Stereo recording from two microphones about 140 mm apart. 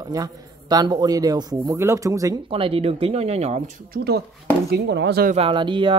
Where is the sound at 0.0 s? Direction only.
25° right (ahead or behind).